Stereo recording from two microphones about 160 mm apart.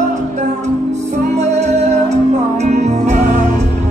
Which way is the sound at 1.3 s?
45° right (ahead or behind).